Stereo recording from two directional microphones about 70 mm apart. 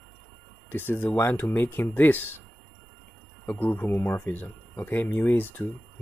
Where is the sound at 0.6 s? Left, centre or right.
Left.